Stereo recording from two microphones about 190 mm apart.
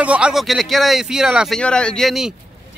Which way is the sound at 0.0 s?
5° right (ahead or behind).